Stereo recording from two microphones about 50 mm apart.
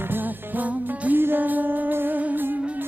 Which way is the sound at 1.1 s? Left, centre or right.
Right.